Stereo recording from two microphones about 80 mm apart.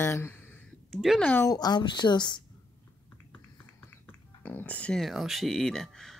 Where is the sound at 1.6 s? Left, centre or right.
Left.